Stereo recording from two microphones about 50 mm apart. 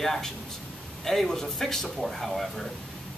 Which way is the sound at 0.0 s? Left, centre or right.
Centre.